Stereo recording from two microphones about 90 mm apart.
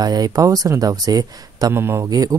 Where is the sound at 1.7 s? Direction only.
25° right (ahead or behind).